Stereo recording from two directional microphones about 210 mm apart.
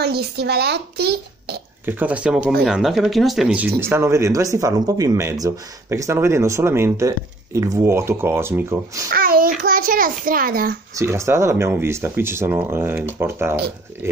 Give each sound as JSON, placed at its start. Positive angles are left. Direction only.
{"t": 0.0, "sound": "a child's voice", "side_deg": -50}
{"t": 1.9, "sound": "speech", "side_deg": -10}
{"t": 9.1, "sound": "a child's voice", "side_deg": -45}
{"t": 11.0, "sound": "speech", "side_deg": -15}